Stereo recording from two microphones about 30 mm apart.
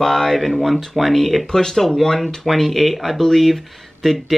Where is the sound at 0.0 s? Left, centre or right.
Centre.